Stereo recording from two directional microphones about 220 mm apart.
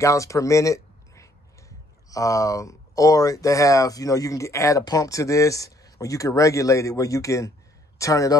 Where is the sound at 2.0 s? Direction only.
15° left (ahead or behind).